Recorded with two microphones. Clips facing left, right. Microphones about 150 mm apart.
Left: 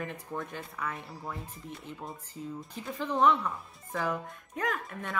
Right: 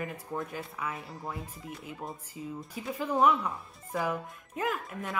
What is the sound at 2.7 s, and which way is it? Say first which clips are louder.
Speech: right 2 dB; 10° right (ahead or behind).